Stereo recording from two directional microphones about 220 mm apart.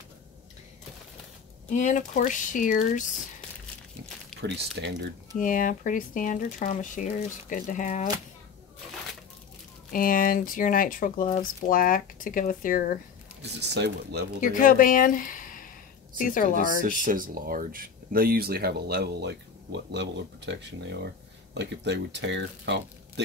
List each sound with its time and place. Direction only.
1.7 s speech: 35° left (ahead or behind)
4.8 s speech: 55° right (ahead or behind)
5.4 s speech: 35° left (ahead or behind)
9.9 s speech: 40° left (ahead or behind)
13.4 s speech: 50° right (ahead or behind)
14.4 s speech: 35° left (ahead or behind)
17.0 s speech: 40° right (ahead or behind)